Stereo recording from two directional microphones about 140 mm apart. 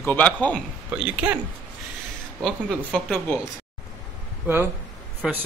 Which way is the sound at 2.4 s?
5° left (ahead or behind).